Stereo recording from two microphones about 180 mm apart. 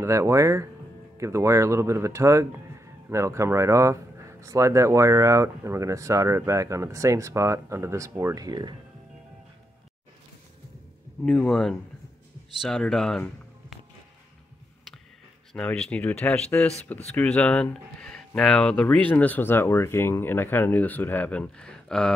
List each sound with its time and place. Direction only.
0.0 s speech: 15° right (ahead or behind)
11.2 s speech: centre (ahead or behind)
15.5 s speech: 5° left (ahead or behind)